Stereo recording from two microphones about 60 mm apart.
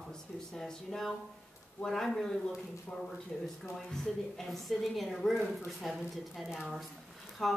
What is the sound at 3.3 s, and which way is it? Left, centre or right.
A woman's voice, centre.